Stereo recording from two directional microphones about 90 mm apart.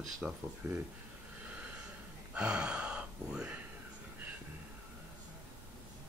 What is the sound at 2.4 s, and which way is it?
Gasp, 10° right (ahead or behind).